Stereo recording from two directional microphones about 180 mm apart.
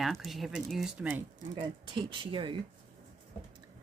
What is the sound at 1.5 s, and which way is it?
Speech, 25° right (ahead or behind).